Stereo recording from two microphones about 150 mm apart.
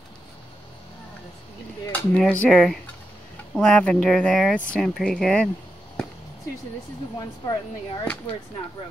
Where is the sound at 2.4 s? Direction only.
5° left (ahead or behind).